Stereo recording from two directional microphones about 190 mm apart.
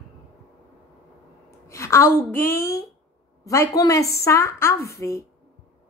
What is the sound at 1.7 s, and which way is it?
A woman's voice, 15° left (ahead or behind).